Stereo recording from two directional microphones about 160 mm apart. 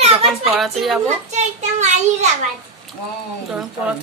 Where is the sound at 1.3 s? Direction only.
45° right (ahead or behind).